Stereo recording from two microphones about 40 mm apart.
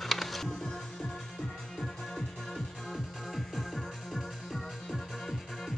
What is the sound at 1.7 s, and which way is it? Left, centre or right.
Music, centre.